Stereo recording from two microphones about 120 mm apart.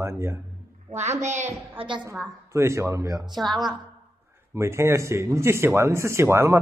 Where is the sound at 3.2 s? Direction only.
Centre (ahead or behind).